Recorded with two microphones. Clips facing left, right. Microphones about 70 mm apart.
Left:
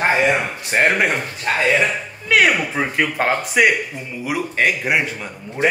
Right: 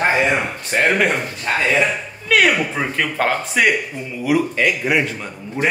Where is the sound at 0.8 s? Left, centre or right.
Centre.